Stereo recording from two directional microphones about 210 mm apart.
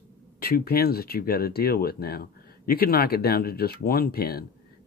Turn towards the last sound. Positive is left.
turn(degrees=45)  # may be behind; listen again after turning